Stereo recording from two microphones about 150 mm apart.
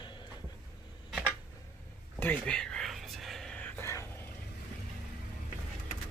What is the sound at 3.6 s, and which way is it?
Vehicle, 15° left (ahead or behind).